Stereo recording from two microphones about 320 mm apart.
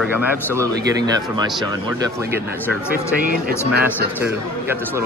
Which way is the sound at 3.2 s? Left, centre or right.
Right.